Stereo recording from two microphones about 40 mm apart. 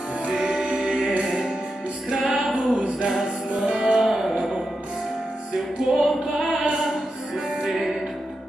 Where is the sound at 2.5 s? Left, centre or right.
Right.